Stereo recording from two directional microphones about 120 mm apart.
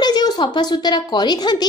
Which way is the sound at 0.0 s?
35° left (ahead or behind).